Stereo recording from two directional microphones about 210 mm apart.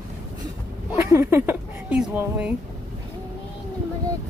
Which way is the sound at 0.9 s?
15° right (ahead or behind).